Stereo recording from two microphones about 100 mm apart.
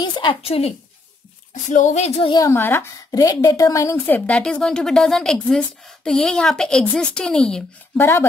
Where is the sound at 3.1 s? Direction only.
35° left (ahead or behind).